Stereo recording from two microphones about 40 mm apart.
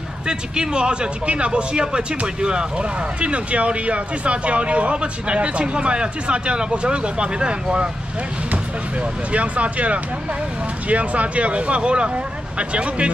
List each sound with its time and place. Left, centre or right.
0.3 s speech: right
9.3 s speech: right